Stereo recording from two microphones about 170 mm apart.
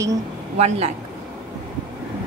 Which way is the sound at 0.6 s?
40° right (ahead or behind).